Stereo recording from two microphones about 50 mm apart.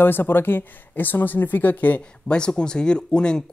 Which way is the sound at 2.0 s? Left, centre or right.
Centre.